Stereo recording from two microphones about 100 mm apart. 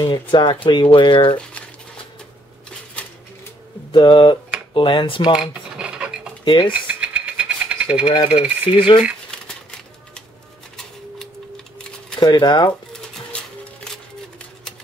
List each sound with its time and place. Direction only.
0.0 s speech: 50° left (ahead or behind)
3.0 s a sound: 10° left (ahead or behind)
3.9 s speech: 55° left (ahead or behind)
5.5 s filing: 10° right (ahead or behind)
6.4 s a sound: 50° left (ahead or behind)
6.7 s filing: 15° right (ahead or behind)
8.0 s speech: 60° left (ahead or behind)
9.3 s typewriter: 10° left (ahead or behind)
12.2 s speech: 45° left (ahead or behind)
12.9 s music: 10° left (ahead or behind)